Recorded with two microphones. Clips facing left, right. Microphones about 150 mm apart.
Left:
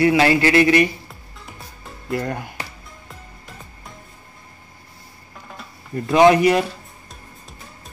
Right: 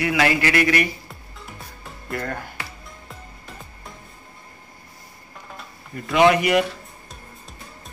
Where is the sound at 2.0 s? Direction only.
20° left (ahead or behind).